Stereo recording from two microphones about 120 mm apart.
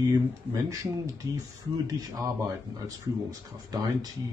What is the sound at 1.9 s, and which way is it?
Speech, 30° right (ahead or behind).